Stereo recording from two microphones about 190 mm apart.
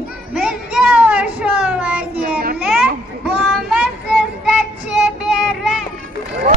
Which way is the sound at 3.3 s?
5° right (ahead or behind).